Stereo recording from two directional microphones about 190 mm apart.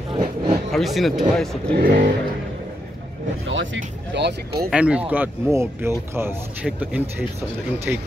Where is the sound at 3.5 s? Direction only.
80° right.